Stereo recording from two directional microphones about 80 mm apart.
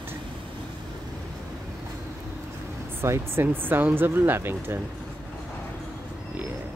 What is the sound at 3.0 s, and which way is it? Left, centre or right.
Speech, right.